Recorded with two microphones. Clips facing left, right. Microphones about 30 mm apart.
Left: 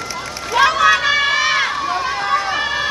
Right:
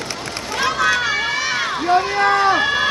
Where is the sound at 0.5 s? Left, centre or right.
Left.